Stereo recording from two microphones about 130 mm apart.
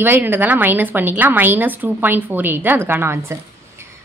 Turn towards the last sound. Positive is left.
turn(degrees=-15)  # may be behind; listen again after turning